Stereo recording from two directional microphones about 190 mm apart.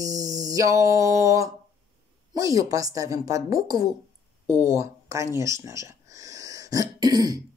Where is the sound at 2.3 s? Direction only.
20° right (ahead or behind).